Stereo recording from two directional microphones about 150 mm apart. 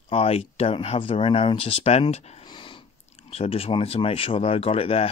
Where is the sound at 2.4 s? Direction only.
30° left (ahead or behind).